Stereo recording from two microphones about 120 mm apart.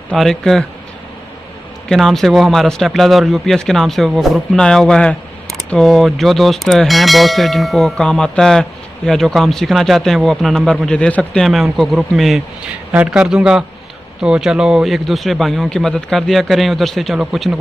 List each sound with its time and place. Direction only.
0.1 s speech: 5° left (ahead or behind)
1.9 s a man's voice: 5° left (ahead or behind)